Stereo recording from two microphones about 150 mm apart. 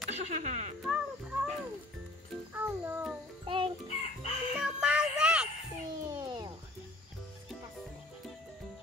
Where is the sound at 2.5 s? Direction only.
15° right (ahead or behind).